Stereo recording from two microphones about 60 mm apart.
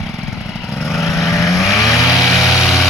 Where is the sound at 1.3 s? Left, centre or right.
Left.